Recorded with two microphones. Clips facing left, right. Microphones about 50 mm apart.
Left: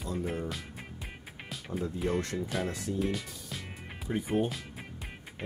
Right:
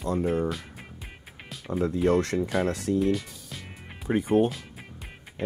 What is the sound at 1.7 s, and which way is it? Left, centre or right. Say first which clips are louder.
Speech: right 9 dB; right.